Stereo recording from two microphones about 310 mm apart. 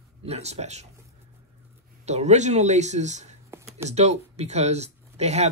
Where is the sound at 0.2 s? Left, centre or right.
Right.